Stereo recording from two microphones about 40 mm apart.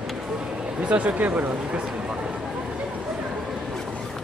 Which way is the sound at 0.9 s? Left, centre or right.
Right.